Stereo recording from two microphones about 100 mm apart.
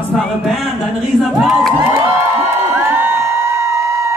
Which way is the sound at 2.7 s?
25° right (ahead or behind).